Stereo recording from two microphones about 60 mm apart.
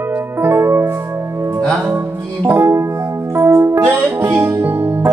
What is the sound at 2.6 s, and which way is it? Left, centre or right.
Music, right.